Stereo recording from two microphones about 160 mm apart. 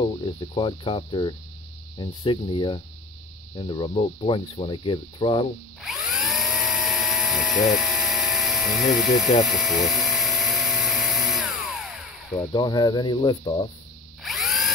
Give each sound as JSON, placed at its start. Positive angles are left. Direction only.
{"t": 0.0, "sound": "speech", "side_deg": 30}
{"t": 5.8, "sound": "helicopter", "side_deg": 0}
{"t": 9.5, "sound": "dental drill", "side_deg": 0}
{"t": 12.5, "sound": "speech", "side_deg": 25}
{"t": 14.2, "sound": "drill", "side_deg": 0}